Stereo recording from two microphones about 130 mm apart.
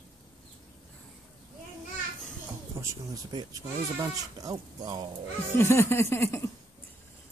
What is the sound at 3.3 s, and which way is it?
Speech, 30° right (ahead or behind).